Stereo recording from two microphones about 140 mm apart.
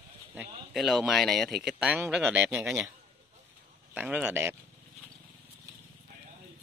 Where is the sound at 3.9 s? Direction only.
10° right (ahead or behind).